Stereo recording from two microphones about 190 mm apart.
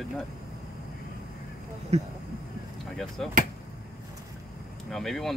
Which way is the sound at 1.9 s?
35° right (ahead or behind).